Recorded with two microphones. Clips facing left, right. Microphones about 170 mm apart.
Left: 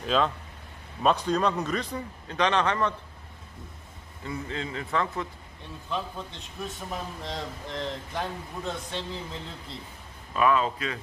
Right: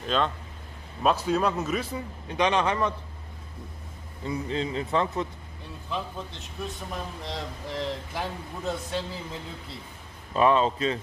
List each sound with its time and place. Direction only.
0.0 s a man's voice: centre (ahead or behind)
4.3 s speech: 20° right (ahead or behind)
5.9 s a man's voice: 5° right (ahead or behind)
10.3 s speech: 30° right (ahead or behind)